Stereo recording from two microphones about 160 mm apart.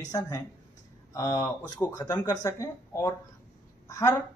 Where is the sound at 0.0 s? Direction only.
20° left (ahead or behind).